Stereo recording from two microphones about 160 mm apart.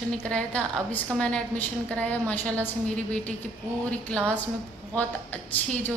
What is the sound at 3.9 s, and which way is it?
A woman's voice, 5° left (ahead or behind).